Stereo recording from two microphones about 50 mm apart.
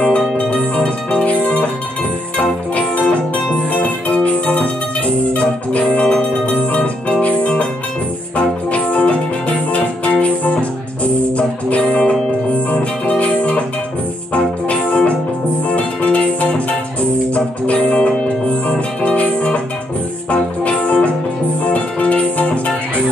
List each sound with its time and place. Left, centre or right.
0.6 s music: left